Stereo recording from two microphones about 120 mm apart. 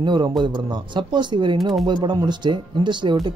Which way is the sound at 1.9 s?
40° right (ahead or behind).